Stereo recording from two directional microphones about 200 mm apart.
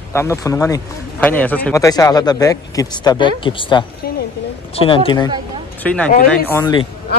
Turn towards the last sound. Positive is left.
turn(degrees=15)  # may be behind; listen again after turning